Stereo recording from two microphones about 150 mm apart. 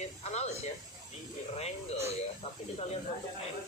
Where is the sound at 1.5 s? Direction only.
45° left (ahead or behind).